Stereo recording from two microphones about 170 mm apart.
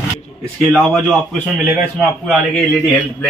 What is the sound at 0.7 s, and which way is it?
A man's voice, centre (ahead or behind).